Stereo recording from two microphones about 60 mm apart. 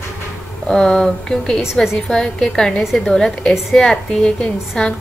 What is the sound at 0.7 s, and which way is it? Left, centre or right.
A woman's voice, centre.